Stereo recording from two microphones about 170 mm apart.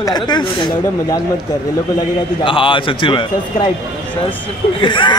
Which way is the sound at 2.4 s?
30° left (ahead or behind).